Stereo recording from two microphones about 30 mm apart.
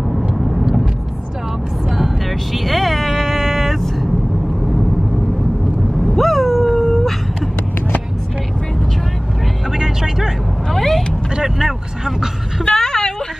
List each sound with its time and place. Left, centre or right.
1.9 s vehicle: centre
6.1 s dog: centre
9.7 s vehicle: centre
10.7 s cat: centre
11.4 s vehicle: centre
12.6 s a sound: left